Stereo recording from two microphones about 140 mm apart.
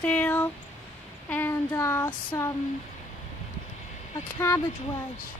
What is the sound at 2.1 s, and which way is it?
Child singing, 25° left (ahead or behind).